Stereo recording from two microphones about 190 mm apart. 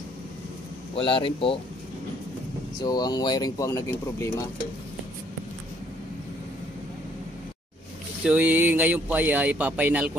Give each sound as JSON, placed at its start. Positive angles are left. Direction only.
{"t": 0.9, "sound": "speech", "side_deg": 30}
{"t": 2.8, "sound": "speech", "side_deg": 20}
{"t": 8.2, "sound": "speech", "side_deg": -5}